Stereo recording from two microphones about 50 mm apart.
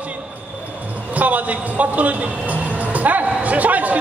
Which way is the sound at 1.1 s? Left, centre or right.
Right.